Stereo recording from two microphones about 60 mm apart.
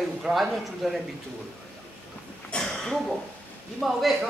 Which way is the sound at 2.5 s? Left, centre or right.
Centre.